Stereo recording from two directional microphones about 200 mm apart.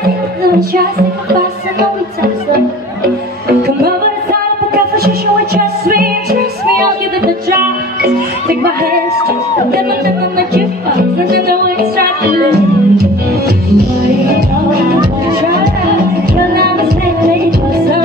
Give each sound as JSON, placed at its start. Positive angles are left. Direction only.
{"t": 0.4, "sound": "music", "side_deg": -50}
{"t": 4.7, "sound": "music", "side_deg": -50}
{"t": 9.7, "sound": "music", "side_deg": -50}